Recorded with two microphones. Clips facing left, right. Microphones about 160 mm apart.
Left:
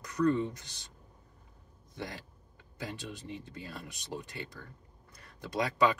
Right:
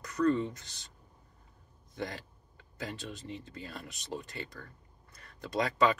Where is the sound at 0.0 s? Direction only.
15° left (ahead or behind).